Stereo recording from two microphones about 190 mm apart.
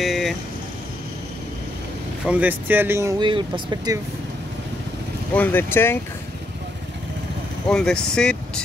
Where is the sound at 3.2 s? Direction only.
25° right (ahead or behind).